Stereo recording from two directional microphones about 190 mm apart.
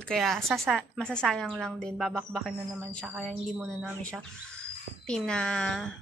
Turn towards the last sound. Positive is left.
turn(degrees=5)  # may be behind; listen again after turning